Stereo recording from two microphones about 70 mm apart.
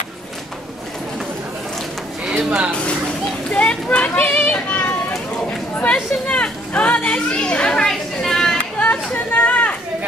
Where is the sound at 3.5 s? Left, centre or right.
Centre.